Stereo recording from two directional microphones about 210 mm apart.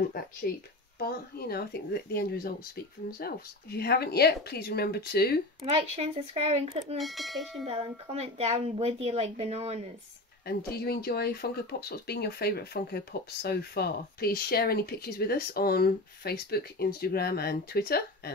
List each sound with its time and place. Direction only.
0.5 s speech: 45° left (ahead or behind)
5.7 s a woman's voice: 25° right (ahead or behind)
7.0 s speech: centre (ahead or behind)
7.6 s a woman's voice: 30° right (ahead or behind)
10.4 s speech: 50° left (ahead or behind)